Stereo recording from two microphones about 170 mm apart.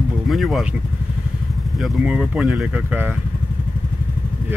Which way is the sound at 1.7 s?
5° right (ahead or behind).